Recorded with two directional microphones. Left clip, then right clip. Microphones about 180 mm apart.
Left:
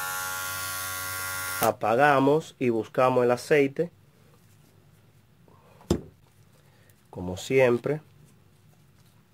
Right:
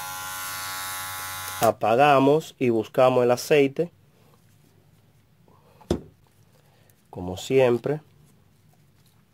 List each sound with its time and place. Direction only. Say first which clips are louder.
1.7 s speech: right 3 dB; 30° right (ahead or behind)
7.1 s speech: right 2 dB; 20° right (ahead or behind)